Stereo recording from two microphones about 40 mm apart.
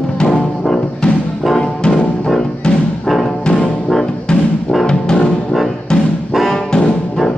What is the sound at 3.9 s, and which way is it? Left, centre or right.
Music, centre.